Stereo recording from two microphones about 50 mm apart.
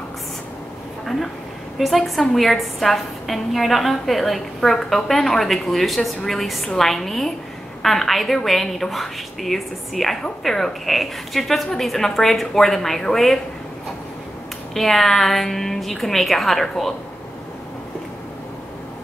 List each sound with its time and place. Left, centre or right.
1.8 s a woman's voice: centre
14.7 s a woman's voice: centre